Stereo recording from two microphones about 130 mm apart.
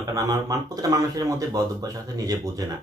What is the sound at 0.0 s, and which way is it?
Speech, 25° right (ahead or behind).